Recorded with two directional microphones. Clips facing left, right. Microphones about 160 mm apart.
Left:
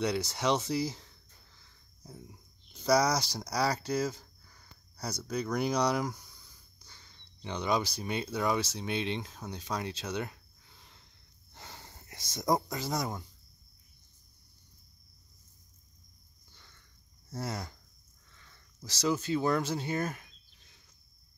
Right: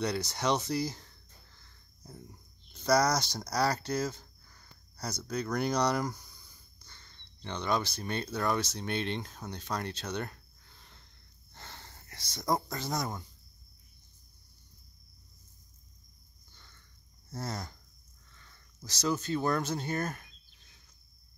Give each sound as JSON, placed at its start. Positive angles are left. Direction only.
{"t": 0.0, "sound": "speech", "side_deg": 5}
{"t": 11.5, "sound": "a sound", "side_deg": 10}
{"t": 12.7, "sound": "speech", "side_deg": 5}
{"t": 17.3, "sound": "speech", "side_deg": 10}